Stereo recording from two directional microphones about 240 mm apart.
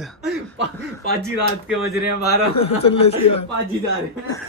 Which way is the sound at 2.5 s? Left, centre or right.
Left.